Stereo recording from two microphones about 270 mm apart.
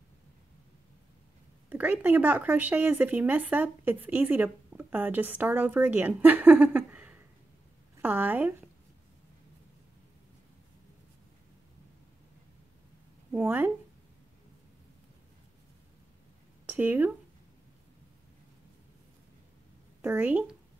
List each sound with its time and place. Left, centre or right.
1.7 s speech: centre
13.3 s speech: centre
16.6 s speech: centre
20.0 s speech: centre